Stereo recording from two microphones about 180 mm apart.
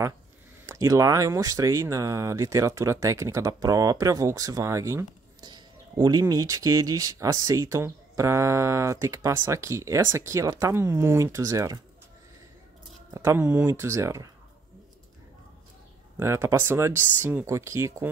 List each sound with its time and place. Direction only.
0.7 s speech: 15° right (ahead or behind)
13.1 s speech: 15° right (ahead or behind)
16.2 s speech: 15° right (ahead or behind)